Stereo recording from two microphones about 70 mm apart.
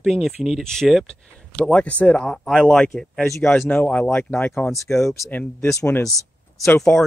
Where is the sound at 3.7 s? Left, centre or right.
Left.